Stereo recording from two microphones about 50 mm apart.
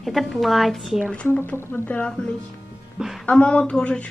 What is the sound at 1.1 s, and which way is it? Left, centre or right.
Speech, left.